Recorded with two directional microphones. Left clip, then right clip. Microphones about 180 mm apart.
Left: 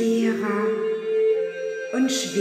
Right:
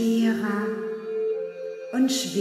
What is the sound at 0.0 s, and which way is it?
Music, 40° right (ahead or behind).